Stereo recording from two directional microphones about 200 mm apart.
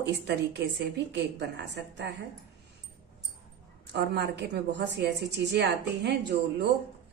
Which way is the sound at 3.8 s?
55° right (ahead or behind).